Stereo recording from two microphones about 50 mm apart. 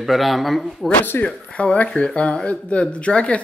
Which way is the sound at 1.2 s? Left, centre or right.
Left.